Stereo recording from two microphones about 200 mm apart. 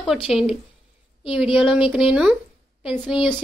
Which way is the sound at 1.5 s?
5° right (ahead or behind).